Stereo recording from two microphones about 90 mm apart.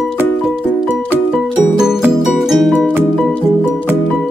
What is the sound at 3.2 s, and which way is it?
Music, 10° left (ahead or behind).